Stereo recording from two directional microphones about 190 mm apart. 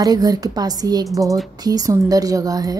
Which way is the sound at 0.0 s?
20° right (ahead or behind).